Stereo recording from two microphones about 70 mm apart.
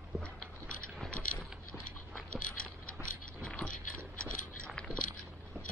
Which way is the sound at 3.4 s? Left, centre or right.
Centre.